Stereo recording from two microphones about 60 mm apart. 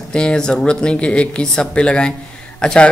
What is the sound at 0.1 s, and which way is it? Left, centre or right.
Speech, centre.